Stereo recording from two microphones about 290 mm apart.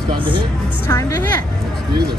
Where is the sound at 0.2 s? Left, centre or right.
Centre.